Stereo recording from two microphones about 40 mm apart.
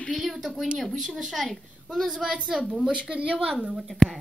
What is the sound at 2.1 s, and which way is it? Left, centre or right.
Speech, centre.